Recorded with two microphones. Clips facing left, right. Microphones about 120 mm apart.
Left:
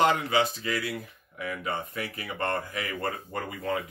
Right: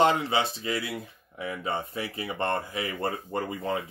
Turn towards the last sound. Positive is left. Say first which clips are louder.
# right 1 dB
turn(degrees=-25)  # may be behind; listen again after turning